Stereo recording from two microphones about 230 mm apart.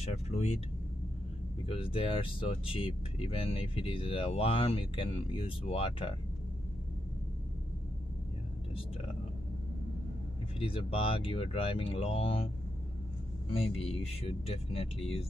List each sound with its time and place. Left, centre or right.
0.0 s speech: left
1.7 s speech: left
10.6 s speech: left
13.5 s speech: left